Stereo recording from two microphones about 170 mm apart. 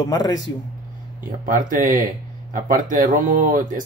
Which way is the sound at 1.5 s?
55° right (ahead or behind).